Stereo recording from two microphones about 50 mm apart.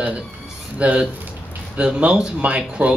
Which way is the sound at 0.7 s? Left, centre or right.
Right.